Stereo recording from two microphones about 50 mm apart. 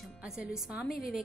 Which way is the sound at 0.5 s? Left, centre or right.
Centre.